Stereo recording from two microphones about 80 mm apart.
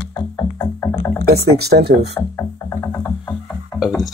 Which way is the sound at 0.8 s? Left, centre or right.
Left.